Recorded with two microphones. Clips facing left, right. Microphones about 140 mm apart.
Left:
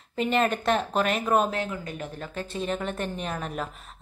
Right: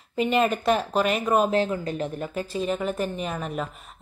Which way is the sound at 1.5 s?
30° right (ahead or behind).